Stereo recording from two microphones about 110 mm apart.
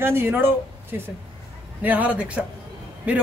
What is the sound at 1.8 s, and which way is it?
Speech, 15° right (ahead or behind).